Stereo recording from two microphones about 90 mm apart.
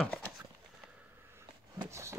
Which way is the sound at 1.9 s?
30° right (ahead or behind).